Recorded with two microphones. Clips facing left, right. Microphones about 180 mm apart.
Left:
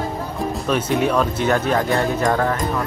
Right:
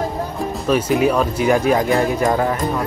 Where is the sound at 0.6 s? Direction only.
5° right (ahead or behind).